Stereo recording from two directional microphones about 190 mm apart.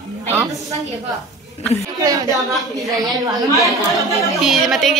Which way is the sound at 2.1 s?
20° right (ahead or behind).